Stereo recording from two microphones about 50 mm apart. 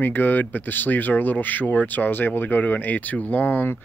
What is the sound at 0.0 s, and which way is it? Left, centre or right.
Speech, left.